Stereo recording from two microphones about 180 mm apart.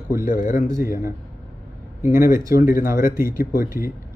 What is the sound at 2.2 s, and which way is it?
A man's voice, 50° left (ahead or behind).